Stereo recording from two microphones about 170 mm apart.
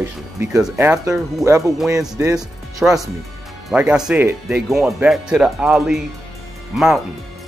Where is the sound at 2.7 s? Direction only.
Centre (ahead or behind).